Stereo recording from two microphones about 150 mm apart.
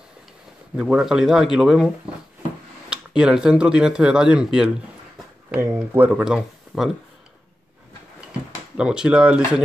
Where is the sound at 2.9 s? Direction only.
5° right (ahead or behind).